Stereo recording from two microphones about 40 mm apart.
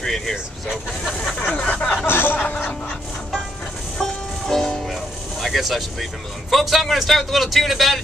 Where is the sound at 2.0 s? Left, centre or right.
Left.